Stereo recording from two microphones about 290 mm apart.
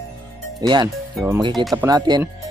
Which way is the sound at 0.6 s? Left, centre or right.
Centre.